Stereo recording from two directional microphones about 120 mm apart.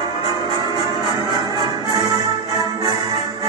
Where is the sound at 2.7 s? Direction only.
40° right (ahead or behind).